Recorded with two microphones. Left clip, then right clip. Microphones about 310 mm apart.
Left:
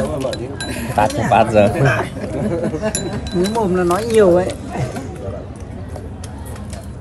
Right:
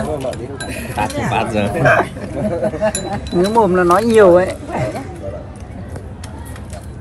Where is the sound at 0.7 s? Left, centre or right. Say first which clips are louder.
Left 5 dB; centre.